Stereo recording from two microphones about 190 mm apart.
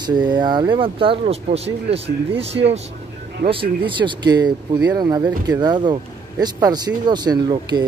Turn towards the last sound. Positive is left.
turn(degrees=-20)  # may be behind; listen again after turning